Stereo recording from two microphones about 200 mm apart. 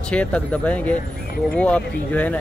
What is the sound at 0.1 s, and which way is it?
Speech, 5° left (ahead or behind).